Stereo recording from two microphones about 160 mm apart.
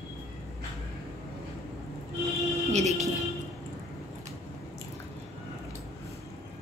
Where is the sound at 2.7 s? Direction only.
45° right (ahead or behind).